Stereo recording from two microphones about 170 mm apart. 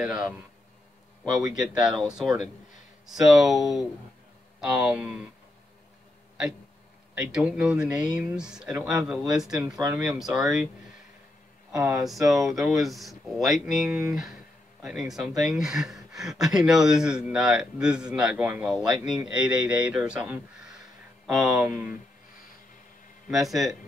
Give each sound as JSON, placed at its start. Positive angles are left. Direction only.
{"t": 1.7, "sound": "speech", "side_deg": -5}
{"t": 7.2, "sound": "speech", "side_deg": -5}
{"t": 9.8, "sound": "speech", "side_deg": -20}
{"t": 10.0, "sound": "speech", "side_deg": -5}
{"t": 11.9, "sound": "speech", "side_deg": 0}
{"t": 23.3, "sound": "speech", "side_deg": 0}